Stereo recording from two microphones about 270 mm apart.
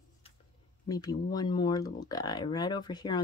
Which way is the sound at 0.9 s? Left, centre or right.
Centre.